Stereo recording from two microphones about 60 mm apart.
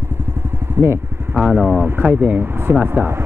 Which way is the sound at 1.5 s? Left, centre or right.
Right.